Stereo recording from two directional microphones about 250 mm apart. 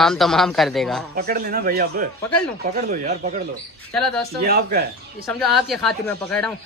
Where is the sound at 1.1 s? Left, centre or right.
Right.